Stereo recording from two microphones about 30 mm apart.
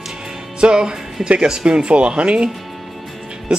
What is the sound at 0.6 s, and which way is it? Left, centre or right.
Speech, right.